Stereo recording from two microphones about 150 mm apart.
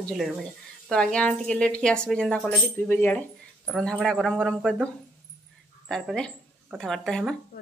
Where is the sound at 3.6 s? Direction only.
Centre (ahead or behind).